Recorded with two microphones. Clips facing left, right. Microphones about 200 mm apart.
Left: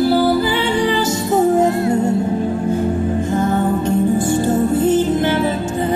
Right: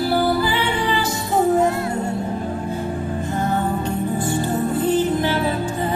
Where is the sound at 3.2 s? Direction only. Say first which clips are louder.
Left 3 dB; 45° left (ahead or behind).